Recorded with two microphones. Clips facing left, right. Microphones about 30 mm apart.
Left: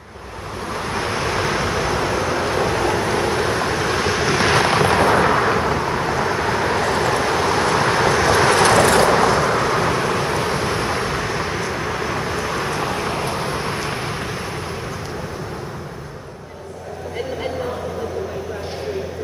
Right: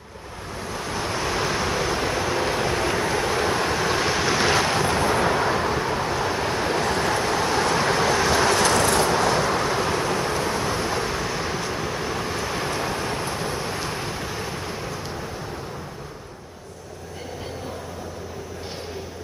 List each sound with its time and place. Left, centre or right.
0.7 s waves: left; by 4.6 s centre
4.6 s fireworks: left
4.9 s thunder: left
5.2 s vehicle: left
5.6 s vehicle: centre
8.6 s vehicle: left
9.1 s vehicle: left
9.6 s vehicle: left
11.9 s vehicle: left
13.7 s vehicle: left